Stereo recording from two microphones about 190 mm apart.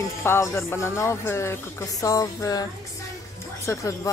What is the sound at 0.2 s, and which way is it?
Speech, 15° left (ahead or behind).